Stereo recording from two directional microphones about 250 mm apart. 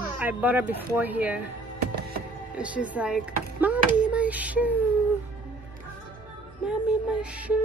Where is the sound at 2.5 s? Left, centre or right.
Centre.